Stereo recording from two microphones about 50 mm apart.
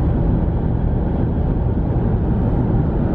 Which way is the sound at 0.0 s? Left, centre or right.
Centre.